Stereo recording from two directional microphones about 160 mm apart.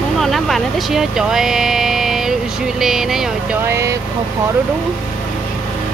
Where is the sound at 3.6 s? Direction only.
15° right (ahead or behind).